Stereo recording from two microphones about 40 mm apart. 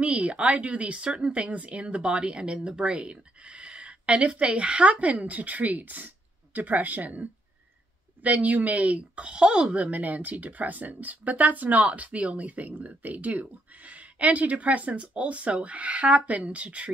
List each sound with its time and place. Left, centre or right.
0.0 s speech: right